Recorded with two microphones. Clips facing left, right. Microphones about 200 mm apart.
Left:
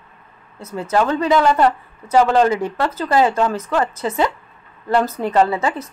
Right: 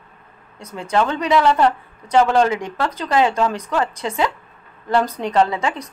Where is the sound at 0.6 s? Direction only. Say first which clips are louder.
Left 1 dB; 5° left (ahead or behind).